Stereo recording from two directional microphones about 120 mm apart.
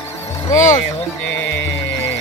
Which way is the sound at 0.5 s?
90° left.